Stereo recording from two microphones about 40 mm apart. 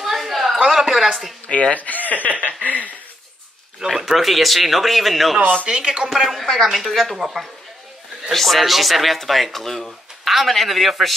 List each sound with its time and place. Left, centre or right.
0.0 s a sound: centre
0.8 s speech: centre
1.5 s speech: left
3.8 s speech: centre
5.8 s speech: centre
6.1 s speech: centre
7.2 s speech: centre
8.3 s speech: centre